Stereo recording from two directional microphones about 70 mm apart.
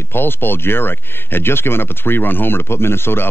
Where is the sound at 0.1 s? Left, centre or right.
Left.